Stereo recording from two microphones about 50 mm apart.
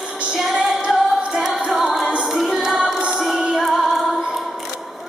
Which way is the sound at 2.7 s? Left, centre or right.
Centre.